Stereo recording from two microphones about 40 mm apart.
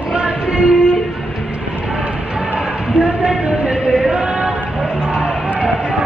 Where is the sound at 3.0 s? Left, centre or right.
Right.